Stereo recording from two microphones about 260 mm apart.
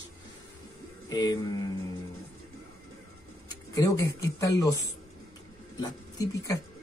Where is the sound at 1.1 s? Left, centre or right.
Centre.